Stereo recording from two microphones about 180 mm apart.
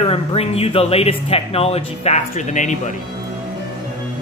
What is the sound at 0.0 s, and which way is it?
Speech, 30° left (ahead or behind).